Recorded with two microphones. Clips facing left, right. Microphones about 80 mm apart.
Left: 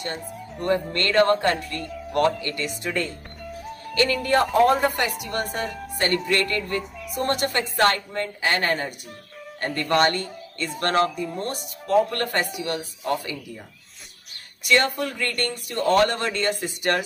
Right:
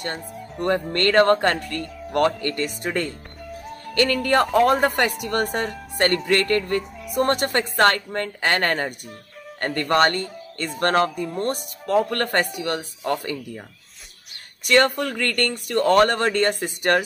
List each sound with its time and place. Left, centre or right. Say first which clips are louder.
0.0 s speech: right 1 dB; right
9.7 s speech: right 2 dB; right
14.6 s speech: right 3 dB; right